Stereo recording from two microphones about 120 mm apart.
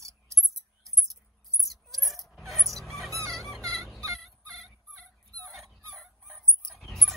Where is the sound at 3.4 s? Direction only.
5° left (ahead or behind).